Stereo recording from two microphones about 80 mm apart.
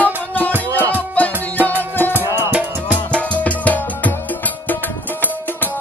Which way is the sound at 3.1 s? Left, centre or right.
Centre.